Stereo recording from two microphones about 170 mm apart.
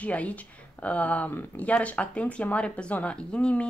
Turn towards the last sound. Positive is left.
turn(degrees=5)  # may be behind; listen again after turning